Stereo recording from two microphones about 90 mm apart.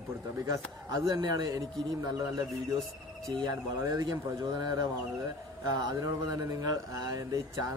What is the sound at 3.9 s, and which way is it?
Speech, 45° right (ahead or behind).